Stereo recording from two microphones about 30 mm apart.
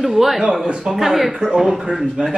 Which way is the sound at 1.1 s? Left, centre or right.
Centre.